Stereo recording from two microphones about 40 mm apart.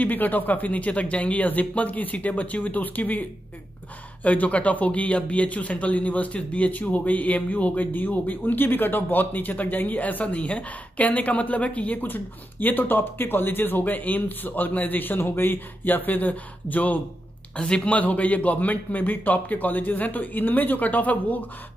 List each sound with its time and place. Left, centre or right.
0.0 s a man's voice: left
12.1 s speech: left
17.6 s speech: left
17.8 s speech: left